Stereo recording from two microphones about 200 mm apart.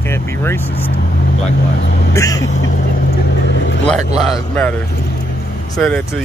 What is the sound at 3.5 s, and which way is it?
Vehicle, 65° left (ahead or behind).